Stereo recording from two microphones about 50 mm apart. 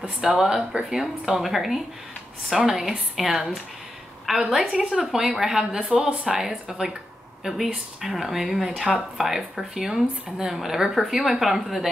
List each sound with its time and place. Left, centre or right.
0.2 s a woman's voice: centre
5.8 s a woman's voice: right; by 11.9 s centre